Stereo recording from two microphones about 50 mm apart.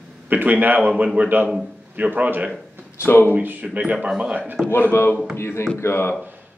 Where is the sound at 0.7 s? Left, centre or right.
Right.